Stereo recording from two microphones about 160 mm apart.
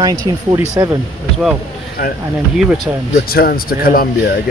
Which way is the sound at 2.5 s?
Centre (ahead or behind).